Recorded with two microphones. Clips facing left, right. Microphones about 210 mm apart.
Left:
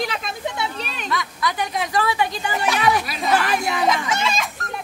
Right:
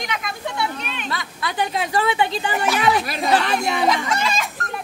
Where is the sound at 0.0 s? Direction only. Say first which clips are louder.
Left 2 dB; 30° left (ahead or behind).